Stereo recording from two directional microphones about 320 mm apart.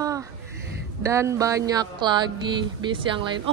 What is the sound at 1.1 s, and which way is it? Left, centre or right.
Speech, centre.